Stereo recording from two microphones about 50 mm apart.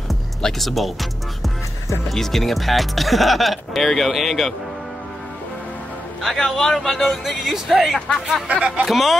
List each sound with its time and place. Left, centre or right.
0.4 s speech: centre
2.0 s speech: centre
6.2 s speech: centre
7.2 s speech: centre
8.5 s speech: right
8.8 s speech: centre